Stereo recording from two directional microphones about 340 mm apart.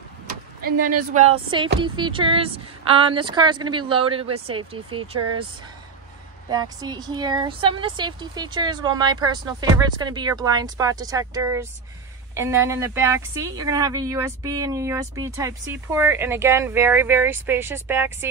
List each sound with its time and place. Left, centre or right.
0.6 s speech: right
6.5 s speech: centre